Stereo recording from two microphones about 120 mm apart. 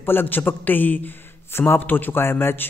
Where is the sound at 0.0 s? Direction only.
15° left (ahead or behind).